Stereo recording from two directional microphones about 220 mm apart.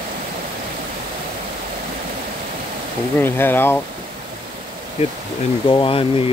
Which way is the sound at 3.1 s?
10° left (ahead or behind).